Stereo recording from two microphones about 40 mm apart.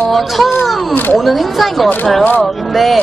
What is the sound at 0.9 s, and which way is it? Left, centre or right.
Speech, left.